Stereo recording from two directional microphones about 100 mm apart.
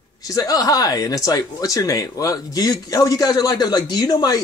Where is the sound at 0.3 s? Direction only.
40° left (ahead or behind).